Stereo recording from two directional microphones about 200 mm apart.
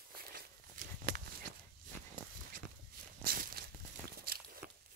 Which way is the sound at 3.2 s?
45° right (ahead or behind).